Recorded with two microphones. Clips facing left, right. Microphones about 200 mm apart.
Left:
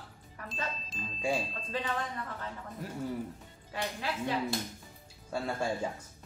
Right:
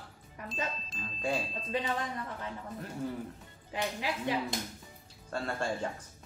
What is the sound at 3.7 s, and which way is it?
Speech, 15° right (ahead or behind).